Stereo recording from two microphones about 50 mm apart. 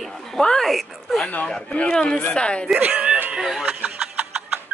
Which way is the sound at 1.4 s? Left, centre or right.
Left.